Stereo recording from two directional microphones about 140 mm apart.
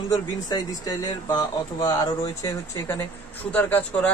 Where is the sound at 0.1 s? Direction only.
25° left (ahead or behind).